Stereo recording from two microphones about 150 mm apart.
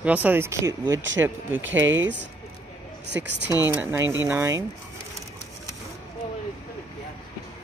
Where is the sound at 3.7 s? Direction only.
15° right (ahead or behind).